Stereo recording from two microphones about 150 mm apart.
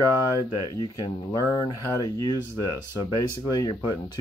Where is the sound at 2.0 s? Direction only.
25° left (ahead or behind).